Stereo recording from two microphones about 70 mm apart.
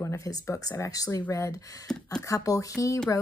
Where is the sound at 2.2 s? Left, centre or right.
Left.